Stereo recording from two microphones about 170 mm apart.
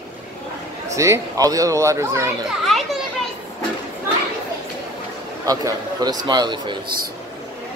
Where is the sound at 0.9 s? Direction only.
15° right (ahead or behind).